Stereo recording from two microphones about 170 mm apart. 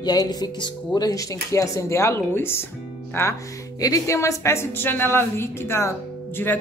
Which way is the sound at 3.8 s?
20° left (ahead or behind).